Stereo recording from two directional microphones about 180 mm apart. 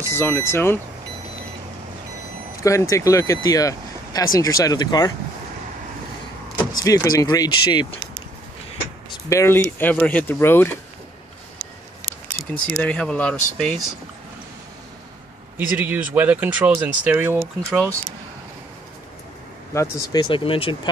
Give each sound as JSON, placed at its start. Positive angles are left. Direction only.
{"t": 0.1, "sound": "speech", "side_deg": 10}
{"t": 2.6, "sound": "speech", "side_deg": 15}
{"t": 6.8, "sound": "speech", "side_deg": 20}
{"t": 9.3, "sound": "speech", "side_deg": 15}
{"t": 12.6, "sound": "speech", "side_deg": 5}
{"t": 15.5, "sound": "speech", "side_deg": -10}
{"t": 17.6, "sound": "speech", "side_deg": 5}
{"t": 19.7, "sound": "speech", "side_deg": 20}